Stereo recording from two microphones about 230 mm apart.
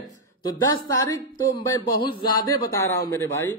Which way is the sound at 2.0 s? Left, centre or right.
Left.